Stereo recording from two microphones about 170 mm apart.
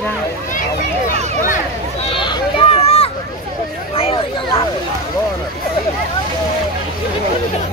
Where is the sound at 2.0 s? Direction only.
30° left (ahead or behind).